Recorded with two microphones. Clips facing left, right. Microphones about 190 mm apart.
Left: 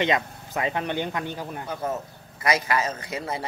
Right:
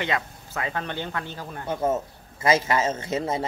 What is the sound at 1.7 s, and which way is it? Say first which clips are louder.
A man's voice: right 7 dB; 25° right (ahead or behind).